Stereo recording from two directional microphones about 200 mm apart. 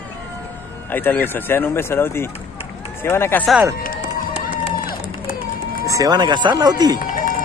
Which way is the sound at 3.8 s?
45° left (ahead or behind).